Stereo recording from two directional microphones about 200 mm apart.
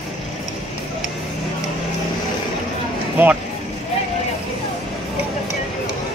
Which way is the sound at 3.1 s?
10° right (ahead or behind).